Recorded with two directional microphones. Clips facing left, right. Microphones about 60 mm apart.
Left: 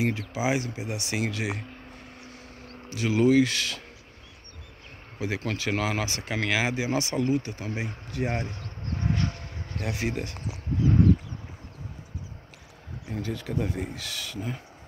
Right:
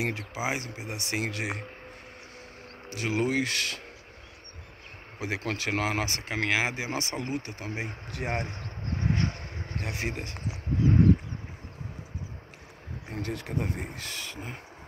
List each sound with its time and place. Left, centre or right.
0.3 s speech: right
2.9 s speech: right
5.2 s speech: right
5.7 s speech: right
6.2 s speech: right
8.8 s a sound: right
13.1 s speech: right